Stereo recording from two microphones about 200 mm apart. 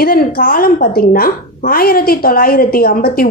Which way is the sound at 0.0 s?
45° left (ahead or behind).